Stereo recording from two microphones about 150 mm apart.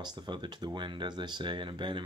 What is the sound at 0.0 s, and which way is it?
Speech, 30° right (ahead or behind).